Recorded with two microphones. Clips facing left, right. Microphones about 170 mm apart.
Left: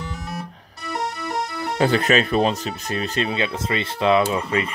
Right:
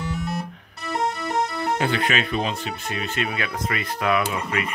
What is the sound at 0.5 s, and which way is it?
Music, 35° left (ahead or behind).